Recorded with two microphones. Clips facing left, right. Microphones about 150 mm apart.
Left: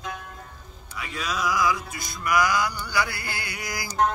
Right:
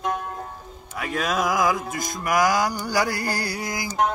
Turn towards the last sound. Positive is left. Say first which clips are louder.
# right 1 dB
turn(degrees=-20)  # may be behind; listen again after turning